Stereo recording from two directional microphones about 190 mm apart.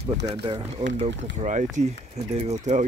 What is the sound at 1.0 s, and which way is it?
Speech, 40° right (ahead or behind).